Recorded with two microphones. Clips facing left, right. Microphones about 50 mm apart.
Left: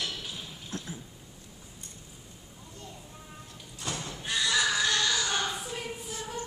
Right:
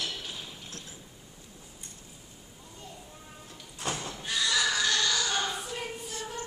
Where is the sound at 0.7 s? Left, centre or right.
Left.